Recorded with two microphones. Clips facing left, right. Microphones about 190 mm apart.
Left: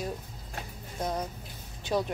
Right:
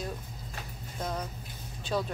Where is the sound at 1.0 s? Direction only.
15° left (ahead or behind).